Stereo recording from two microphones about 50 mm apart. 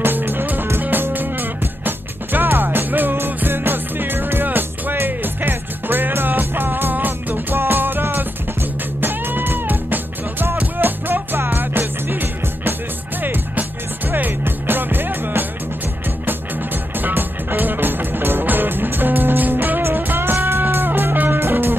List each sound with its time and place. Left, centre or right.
0.0 s music: right
17.0 s music: right